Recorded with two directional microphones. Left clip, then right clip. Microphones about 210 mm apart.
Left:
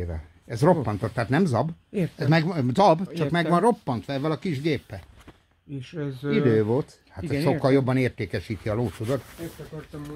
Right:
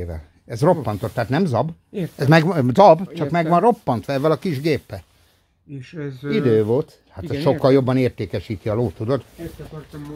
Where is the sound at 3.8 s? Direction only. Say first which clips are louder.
Right 9 dB; 25° right (ahead or behind).